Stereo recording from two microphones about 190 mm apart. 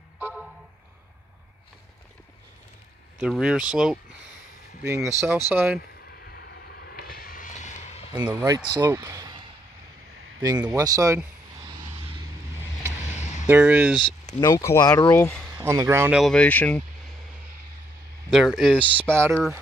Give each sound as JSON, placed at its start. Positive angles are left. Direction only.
{"t": 0.2, "sound": "a sound", "side_deg": -5}
{"t": 3.2, "sound": "speech", "side_deg": -5}
{"t": 6.2, "sound": "vehicle", "side_deg": 55}
{"t": 8.4, "sound": "speech", "side_deg": -15}
{"t": 10.6, "sound": "speech", "side_deg": -15}
{"t": 13.5, "sound": "speech", "side_deg": -10}
{"t": 14.4, "sound": "speech", "side_deg": 15}
{"t": 15.5, "sound": "speech", "side_deg": -15}
{"t": 16.2, "sound": "speech", "side_deg": 5}
{"t": 18.3, "sound": "speech", "side_deg": 0}
{"t": 18.9, "sound": "speech", "side_deg": -10}